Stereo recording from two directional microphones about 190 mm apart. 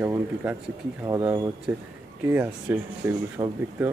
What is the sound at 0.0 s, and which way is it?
Speech, 10° right (ahead or behind).